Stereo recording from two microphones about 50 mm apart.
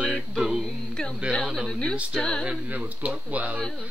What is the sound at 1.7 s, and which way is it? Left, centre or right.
Speech, centre.